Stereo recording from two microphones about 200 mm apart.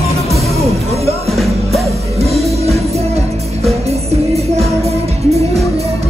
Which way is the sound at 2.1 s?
30° right (ahead or behind).